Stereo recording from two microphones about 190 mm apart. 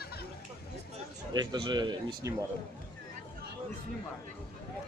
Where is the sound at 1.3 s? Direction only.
20° right (ahead or behind).